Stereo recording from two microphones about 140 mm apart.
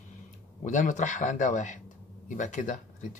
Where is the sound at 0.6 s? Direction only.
65° left (ahead or behind).